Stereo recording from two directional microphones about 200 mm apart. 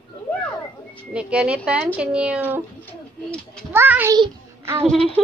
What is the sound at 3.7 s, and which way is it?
Speech, 10° right (ahead or behind).